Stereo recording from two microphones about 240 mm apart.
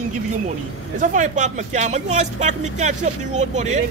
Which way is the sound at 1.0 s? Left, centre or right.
Right.